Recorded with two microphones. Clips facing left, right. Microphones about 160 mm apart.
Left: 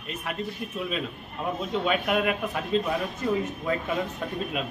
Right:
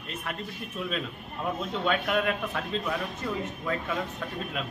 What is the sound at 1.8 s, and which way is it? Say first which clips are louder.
Speech: left 1 dB; 10° left (ahead or behind).